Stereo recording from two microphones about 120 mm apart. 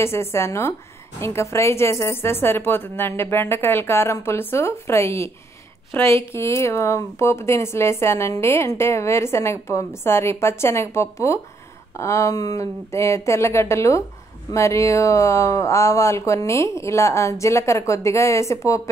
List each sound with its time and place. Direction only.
0.0 s speech: 20° left (ahead or behind)